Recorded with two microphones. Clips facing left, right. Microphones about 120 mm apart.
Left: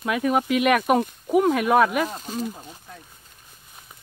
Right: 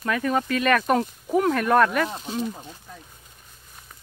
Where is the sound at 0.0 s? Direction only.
10° left (ahead or behind).